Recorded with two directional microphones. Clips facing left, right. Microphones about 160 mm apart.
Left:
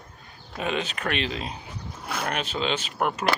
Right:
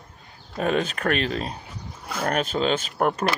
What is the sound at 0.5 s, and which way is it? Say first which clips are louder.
Speech: right 5 dB; 45° right (ahead or behind).